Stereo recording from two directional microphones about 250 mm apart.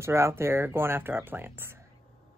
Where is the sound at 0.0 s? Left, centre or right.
Centre.